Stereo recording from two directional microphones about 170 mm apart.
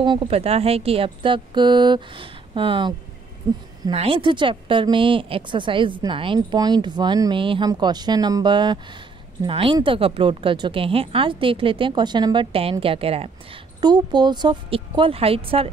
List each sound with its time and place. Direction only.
0.0 s a woman's voice: 30° right (ahead or behind)
3.9 s a woman's voice: 35° right (ahead or behind)